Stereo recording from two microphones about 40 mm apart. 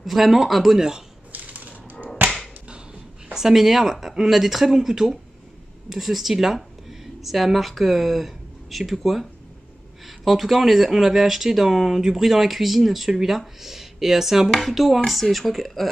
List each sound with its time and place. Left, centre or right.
0.0 s speech: centre
1.3 s crushing: right
3.3 s speech: centre